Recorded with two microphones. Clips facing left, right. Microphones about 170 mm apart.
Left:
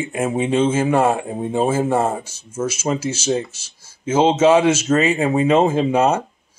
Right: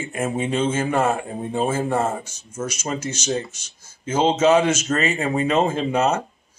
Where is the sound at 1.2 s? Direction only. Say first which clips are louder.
Left 4 dB; 25° left (ahead or behind).